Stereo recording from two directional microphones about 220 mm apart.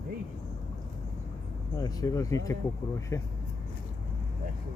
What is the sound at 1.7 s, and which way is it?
Speech, 15° left (ahead or behind).